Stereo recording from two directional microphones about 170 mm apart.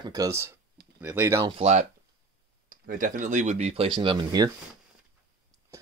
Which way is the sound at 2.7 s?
50° right (ahead or behind).